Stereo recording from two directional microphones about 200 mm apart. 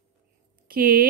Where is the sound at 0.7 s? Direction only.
45° right (ahead or behind).